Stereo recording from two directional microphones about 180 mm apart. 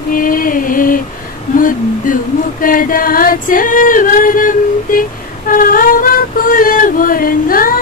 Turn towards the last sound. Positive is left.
turn(degrees=50)  # may be behind; listen again after turning